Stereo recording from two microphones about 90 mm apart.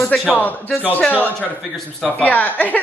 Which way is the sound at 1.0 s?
20° left (ahead or behind).